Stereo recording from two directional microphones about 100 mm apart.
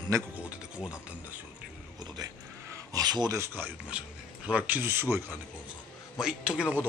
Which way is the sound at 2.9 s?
45° right (ahead or behind).